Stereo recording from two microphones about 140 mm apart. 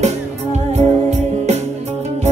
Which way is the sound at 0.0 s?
50° right (ahead or behind).